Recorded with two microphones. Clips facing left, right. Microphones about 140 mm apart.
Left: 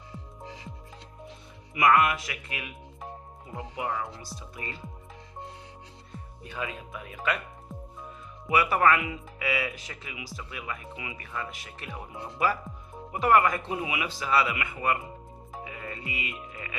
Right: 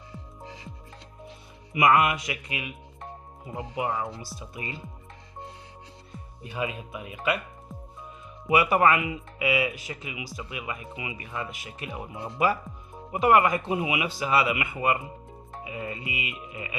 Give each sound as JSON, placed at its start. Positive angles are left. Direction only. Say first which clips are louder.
{"t": 1.7, "sound": "speech", "louder": "right 1 dB", "side_deg": -20}
{"t": 2.4, "sound": "speech", "louder": "right 3 dB", "side_deg": -5}
{"t": 3.5, "sound": "speech", "louder": "right 3 dB", "side_deg": -15}
{"t": 4.2, "sound": "speech", "louder": "right 2 dB", "side_deg": 0}
{"t": 6.4, "sound": "speech", "louder": "right 4 dB", "side_deg": -15}
{"t": 8.5, "sound": "speech", "louder": "right 2 dB", "side_deg": -20}
{"t": 15.6, "sound": "music", "louder": "right 5 dB", "side_deg": -20}